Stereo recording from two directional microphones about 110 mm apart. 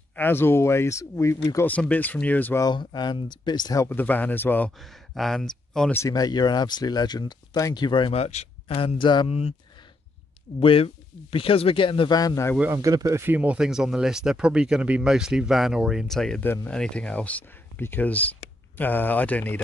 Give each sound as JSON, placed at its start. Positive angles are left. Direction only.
{"t": 0.1, "sound": "speech", "side_deg": 20}
{"t": 1.7, "sound": "speech", "side_deg": 15}
{"t": 2.6, "sound": "speech", "side_deg": 40}
{"t": 3.8, "sound": "speech", "side_deg": 15}
{"t": 4.7, "sound": "speech", "side_deg": 0}
{"t": 6.0, "sound": "speech", "side_deg": 35}
{"t": 8.1, "sound": "speech", "side_deg": 75}
{"t": 10.6, "sound": "speech", "side_deg": 60}
{"t": 12.1, "sound": "speech", "side_deg": 35}
{"t": 12.7, "sound": "speech", "side_deg": -30}
{"t": 13.2, "sound": "speech", "side_deg": -15}